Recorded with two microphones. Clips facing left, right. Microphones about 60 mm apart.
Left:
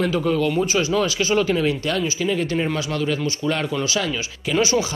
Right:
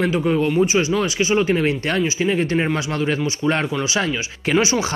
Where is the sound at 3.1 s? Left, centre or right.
Right.